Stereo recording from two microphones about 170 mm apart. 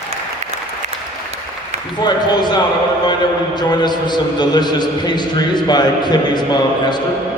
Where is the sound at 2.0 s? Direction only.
25° left (ahead or behind).